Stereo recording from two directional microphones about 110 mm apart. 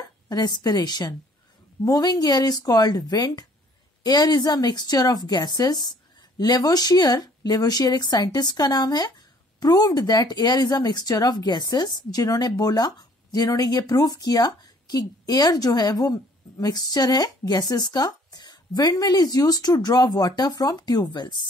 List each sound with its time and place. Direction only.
0.3 s speech: 40° left (ahead or behind)